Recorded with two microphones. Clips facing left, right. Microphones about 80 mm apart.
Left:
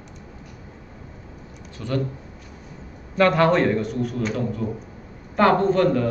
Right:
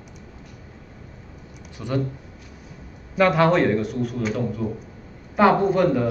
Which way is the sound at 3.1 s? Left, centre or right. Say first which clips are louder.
Even; centre.